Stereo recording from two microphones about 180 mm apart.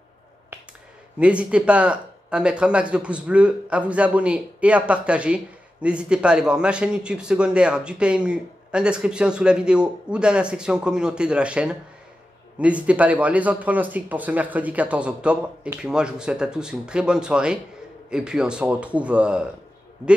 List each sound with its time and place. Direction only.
1.2 s a man's voice: 5° right (ahead or behind)